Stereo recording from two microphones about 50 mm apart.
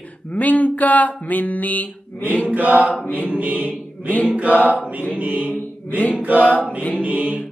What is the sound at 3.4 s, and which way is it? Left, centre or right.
Choir, right.